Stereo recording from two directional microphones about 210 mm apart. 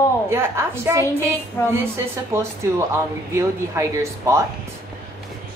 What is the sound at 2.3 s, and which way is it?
A woman's voice, 15° right (ahead or behind).